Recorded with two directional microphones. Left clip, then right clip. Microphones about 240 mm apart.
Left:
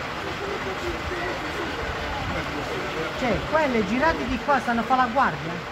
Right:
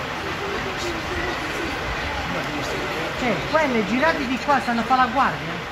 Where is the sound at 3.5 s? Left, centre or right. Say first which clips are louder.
Right 2 dB; left.